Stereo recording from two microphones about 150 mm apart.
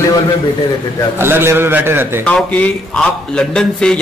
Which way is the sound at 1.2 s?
15° right (ahead or behind).